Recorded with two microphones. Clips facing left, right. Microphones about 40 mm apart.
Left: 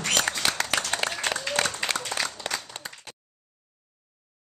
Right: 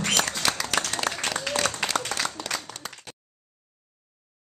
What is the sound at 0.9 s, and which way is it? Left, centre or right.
Applause, left.